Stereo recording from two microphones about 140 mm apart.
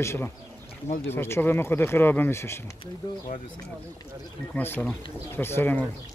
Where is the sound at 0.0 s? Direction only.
20° left (ahead or behind).